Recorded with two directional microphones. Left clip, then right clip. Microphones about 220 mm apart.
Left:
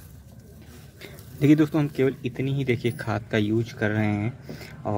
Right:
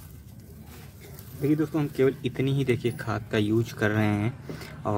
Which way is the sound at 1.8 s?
15° left (ahead or behind).